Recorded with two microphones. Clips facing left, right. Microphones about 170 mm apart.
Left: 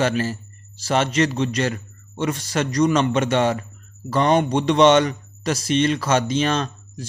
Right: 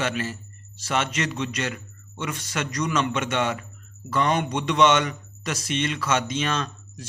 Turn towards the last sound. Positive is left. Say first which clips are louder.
# left 5 dB
turn(degrees=35)  # may be behind; listen again after turning